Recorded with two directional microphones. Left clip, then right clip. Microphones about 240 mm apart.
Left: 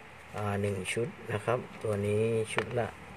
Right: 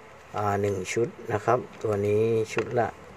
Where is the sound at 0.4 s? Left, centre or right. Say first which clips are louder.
Right 7 dB; centre.